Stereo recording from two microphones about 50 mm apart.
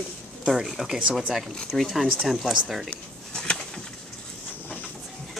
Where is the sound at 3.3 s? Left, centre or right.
Centre.